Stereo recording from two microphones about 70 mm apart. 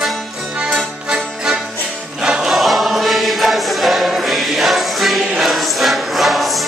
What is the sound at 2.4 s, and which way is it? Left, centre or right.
Choir, centre.